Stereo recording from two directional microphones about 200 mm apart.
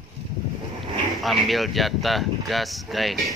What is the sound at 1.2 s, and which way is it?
Speech, centre (ahead or behind).